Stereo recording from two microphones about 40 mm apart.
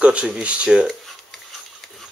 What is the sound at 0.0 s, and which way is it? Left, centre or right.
Speech, right.